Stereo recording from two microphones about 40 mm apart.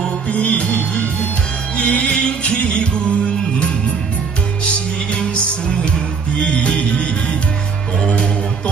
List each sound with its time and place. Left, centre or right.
0.3 s music: left
5.2 s music: left